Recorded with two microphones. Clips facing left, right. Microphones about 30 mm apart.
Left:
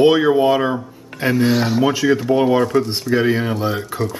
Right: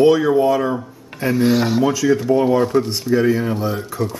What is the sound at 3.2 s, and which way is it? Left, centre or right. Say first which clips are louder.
Speech: even; left.